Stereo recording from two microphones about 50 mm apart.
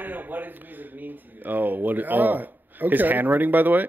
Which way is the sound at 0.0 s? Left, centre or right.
Right.